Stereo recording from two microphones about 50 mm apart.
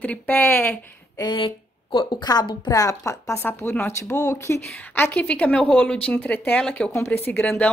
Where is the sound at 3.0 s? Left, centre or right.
Left.